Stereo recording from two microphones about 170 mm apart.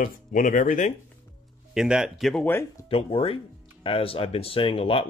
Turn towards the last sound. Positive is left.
turn(degrees=30)  # may be behind; listen again after turning